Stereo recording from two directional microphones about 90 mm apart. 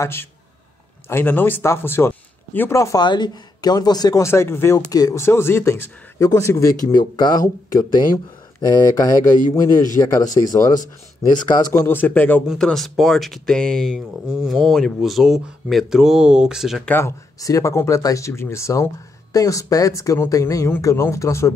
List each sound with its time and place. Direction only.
0.0 s speech: 25° left (ahead or behind)
3.0 s speech: 55° left (ahead or behind)
4.2 s speech: 30° left (ahead or behind)
4.7 s speech: 45° left (ahead or behind)
5.2 s speech: 25° left (ahead or behind); by 7.4 s 55° left (ahead or behind)
8.5 s speech: 45° left (ahead or behind)
11.3 s speech: 55° left (ahead or behind)
11.7 s speech: 25° left (ahead or behind)
12.5 s speech: 5° left (ahead or behind)
14.2 s speech: 10° right (ahead or behind)
17.4 s speech: 40° left (ahead or behind)